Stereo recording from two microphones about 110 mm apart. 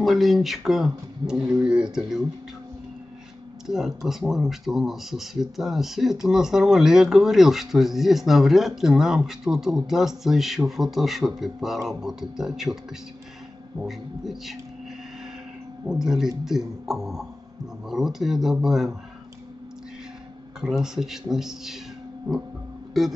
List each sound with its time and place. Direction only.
0.0 s speech: centre (ahead or behind)
3.6 s speech: 5° right (ahead or behind)
13.8 s speech: centre (ahead or behind)
15.9 s speech: 5° right (ahead or behind)
20.6 s speech: 5° right (ahead or behind)